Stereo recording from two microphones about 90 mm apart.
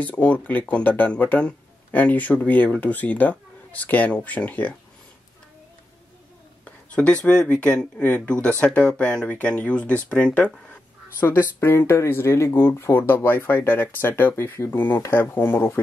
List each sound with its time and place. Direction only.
0.0 s speech: 15° left (ahead or behind)
6.6 s speech: 15° left (ahead or behind)
11.1 s speech: 25° left (ahead or behind)